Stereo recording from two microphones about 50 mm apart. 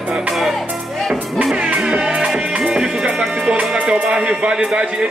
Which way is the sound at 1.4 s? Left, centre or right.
Centre.